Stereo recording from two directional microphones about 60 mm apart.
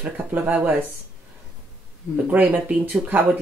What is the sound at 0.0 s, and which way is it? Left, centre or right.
Speech, right.